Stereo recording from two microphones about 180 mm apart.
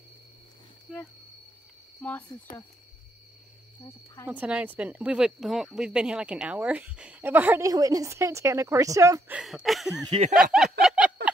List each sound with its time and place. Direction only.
2.0 s cricket: 10° left (ahead or behind)
3.8 s cricket: 20° left (ahead or behind)
4.3 s speech: 5° right (ahead or behind)
9.3 s speech: centre (ahead or behind)
10.3 s a sound: 5° right (ahead or behind)